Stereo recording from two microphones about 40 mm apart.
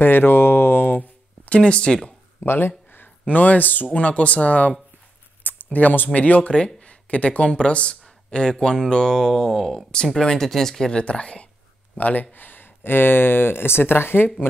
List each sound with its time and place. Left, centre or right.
0.0 s a sound: left
1.5 s speech: left
2.4 s speech: left
3.3 s speech: left
4.0 s speech: left
5.4 s a sound: left
6.1 s speech: left; by 10.9 s centre
10.9 s speech: left
12.0 s speech: left